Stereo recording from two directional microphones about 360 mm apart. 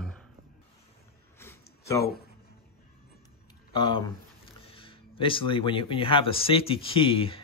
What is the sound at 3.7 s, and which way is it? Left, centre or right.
Speech, centre.